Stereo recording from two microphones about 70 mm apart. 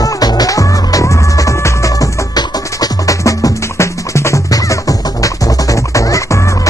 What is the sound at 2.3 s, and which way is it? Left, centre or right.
Music, left.